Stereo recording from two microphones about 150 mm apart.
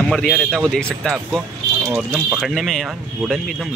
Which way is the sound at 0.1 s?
5° left (ahead or behind).